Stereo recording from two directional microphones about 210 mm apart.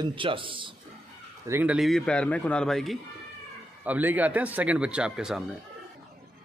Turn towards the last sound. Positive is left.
turn(degrees=-5)  # may be behind; listen again after turning